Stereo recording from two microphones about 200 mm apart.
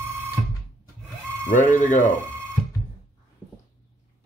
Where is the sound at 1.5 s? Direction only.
40° left (ahead or behind).